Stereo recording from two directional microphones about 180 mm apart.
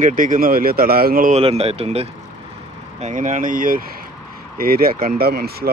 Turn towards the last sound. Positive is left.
turn(degrees=-60)  # may be behind; listen again after turning